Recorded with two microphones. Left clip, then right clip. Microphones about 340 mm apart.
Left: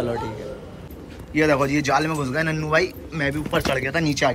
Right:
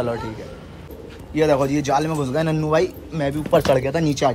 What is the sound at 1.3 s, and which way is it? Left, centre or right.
A man's voice, centre.